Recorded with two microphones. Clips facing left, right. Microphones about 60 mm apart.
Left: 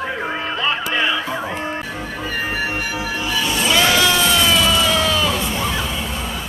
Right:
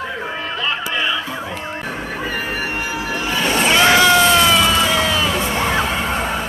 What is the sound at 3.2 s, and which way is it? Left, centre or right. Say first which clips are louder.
Music: right 3 dB; right.